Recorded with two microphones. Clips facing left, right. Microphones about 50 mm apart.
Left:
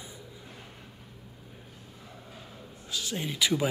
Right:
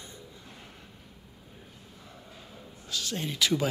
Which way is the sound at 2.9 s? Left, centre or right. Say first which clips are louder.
Even; centre.